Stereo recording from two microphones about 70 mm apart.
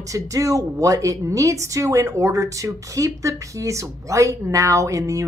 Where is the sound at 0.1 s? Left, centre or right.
Right.